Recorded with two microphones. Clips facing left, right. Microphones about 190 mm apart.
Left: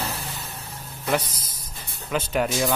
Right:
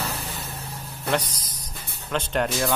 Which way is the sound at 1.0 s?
5° left (ahead or behind).